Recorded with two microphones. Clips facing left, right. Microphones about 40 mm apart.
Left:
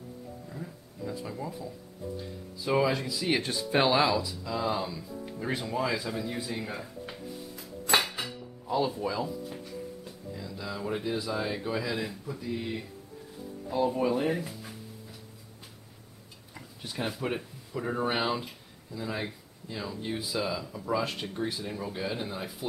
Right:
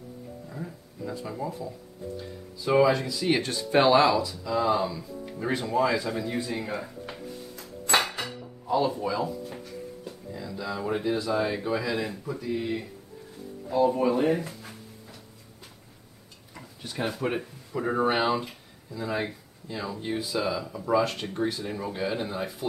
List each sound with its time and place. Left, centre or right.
0.5 s music: centre
1.0 s speech: centre
2.6 s speech: centre
7.1 s music: centre
7.5 s dishes: centre
9.0 s speech: centre
9.5 s music: centre
10.3 s speech: centre
16.5 s tick-tock: centre
17.7 s speech: centre
20.2 s speech: centre
20.6 s speech: centre
21.0 s speech: centre
21.6 s speech: centre